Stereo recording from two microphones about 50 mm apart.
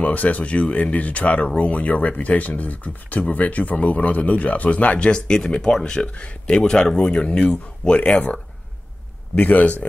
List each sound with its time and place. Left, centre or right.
0.0 s speech: left